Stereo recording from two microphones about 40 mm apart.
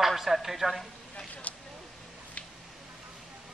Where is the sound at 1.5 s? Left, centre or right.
Left.